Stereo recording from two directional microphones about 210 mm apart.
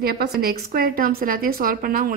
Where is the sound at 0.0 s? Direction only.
50° right (ahead or behind).